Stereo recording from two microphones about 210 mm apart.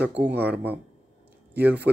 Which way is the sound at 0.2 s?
10° right (ahead or behind).